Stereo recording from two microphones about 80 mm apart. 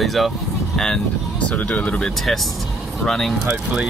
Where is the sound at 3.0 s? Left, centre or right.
Centre.